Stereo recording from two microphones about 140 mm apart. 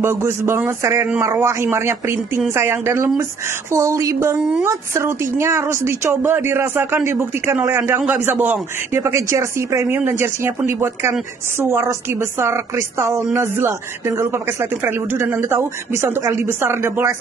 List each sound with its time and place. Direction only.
0.0 s a woman's voice: 15° right (ahead or behind)